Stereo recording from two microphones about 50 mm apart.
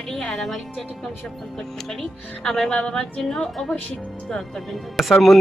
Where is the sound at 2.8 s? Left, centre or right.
Centre.